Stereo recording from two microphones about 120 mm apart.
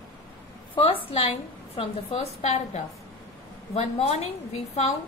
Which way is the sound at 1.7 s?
60° left (ahead or behind).